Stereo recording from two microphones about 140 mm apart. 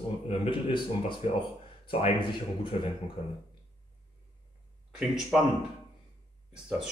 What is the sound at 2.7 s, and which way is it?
Speech, 45° left (ahead or behind).